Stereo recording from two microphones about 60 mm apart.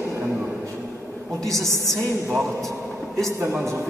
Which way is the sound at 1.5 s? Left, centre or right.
Right.